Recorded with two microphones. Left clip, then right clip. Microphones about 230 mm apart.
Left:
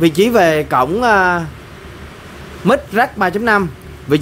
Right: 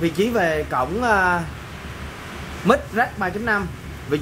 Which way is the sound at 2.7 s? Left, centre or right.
Left.